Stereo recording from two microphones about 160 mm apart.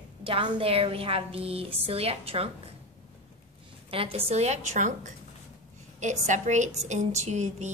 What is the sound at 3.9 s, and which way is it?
A woman's voice, 35° right (ahead or behind).